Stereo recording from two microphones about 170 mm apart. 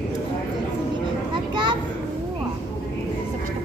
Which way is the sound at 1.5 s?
25° right (ahead or behind).